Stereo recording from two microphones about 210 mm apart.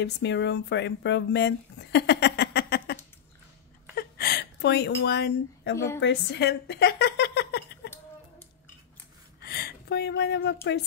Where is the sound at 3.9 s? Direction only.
45° left (ahead or behind).